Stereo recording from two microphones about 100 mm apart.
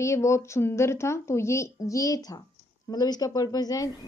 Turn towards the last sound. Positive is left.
turn(degrees=40)  # may be behind; listen again after turning